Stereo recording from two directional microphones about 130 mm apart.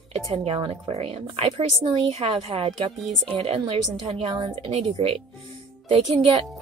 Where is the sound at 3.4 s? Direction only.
45° right (ahead or behind).